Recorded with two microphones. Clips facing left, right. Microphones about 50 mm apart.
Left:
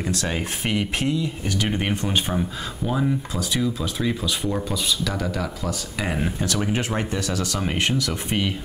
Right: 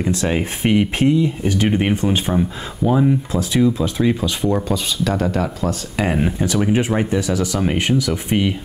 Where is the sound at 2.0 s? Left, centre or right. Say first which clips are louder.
Right 5 dB; centre.